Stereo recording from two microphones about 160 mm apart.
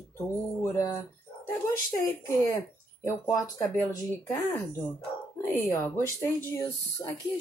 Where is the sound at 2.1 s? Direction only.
20° left (ahead or behind).